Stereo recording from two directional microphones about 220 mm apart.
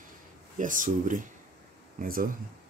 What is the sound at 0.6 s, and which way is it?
Speech, 35° right (ahead or behind).